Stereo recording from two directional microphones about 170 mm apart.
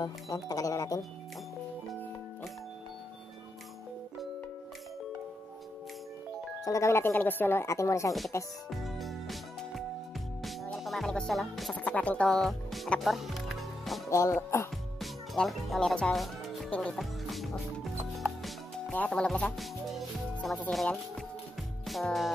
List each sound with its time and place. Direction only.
0.0 s speech: 20° left (ahead or behind)
6.6 s speech: 20° left (ahead or behind)
8.6 s music: centre (ahead or behind)
10.8 s speech: centre (ahead or behind)
14.0 s speech: 20° left (ahead or behind)
15.0 s speech: centre (ahead or behind)
21.8 s music: centre (ahead or behind)